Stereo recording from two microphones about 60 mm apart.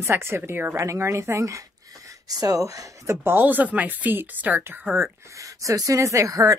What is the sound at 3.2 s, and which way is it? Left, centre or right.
Speech, right.